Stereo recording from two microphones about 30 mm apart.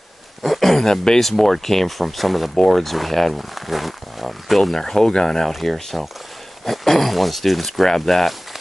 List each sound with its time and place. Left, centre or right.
0.4 s a sound: centre
1.2 s speech: centre
4.7 s speech: centre
5.5 s speech: centre